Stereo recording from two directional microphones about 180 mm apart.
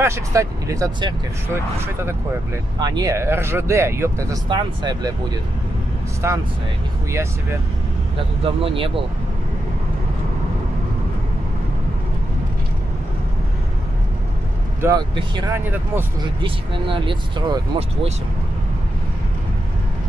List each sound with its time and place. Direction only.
0.0 s speech: 15° right (ahead or behind)
8.5 s speech: 30° right (ahead or behind)
14.8 s speech: 15° right (ahead or behind)
15.6 s speech: 10° right (ahead or behind)
16.3 s speech: 25° right (ahead or behind)